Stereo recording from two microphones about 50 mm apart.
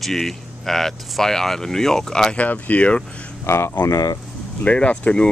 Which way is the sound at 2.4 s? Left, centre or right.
Left.